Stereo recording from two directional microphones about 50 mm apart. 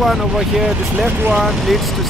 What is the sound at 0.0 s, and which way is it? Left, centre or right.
Speech, centre.